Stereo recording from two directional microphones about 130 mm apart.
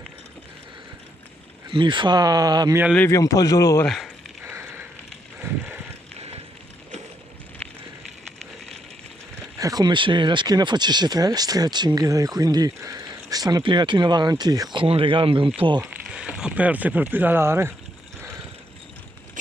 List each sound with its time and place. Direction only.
1.7 s speech: 40° right (ahead or behind)
3.0 s a man's voice: 25° left (ahead or behind)
3.8 s speech: centre (ahead or behind)
4.5 s a sound: 20° right (ahead or behind)
9.6 s speech: 30° right (ahead or behind)
15.8 s speech: 10° right (ahead or behind)
19.4 s vehicle: 80° right